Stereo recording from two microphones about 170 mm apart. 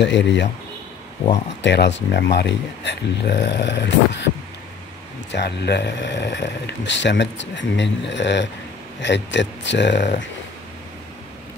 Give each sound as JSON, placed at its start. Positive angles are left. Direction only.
{"t": 0.0, "sound": "speech", "side_deg": 90}
{"t": 1.6, "sound": "speech", "side_deg": 90}
{"t": 5.3, "sound": "speech", "side_deg": 80}